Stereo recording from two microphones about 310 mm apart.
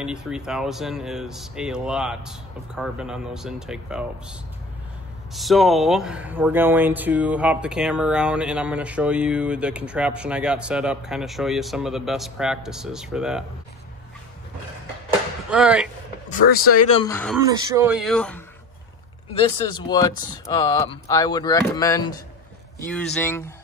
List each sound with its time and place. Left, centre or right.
0.0 s speech: centre
15.5 s speech: centre
16.3 s speech: left
16.8 s speech: centre
17.4 s speech: centre
19.7 s speech: centre